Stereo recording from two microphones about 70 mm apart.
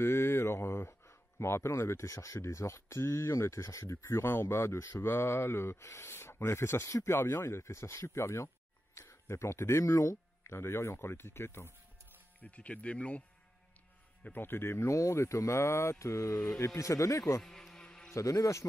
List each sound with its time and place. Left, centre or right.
0.0 s speech: left
12.4 s speech: centre
14.3 s speech: left
17.4 s a sound: centre
18.1 s speech: left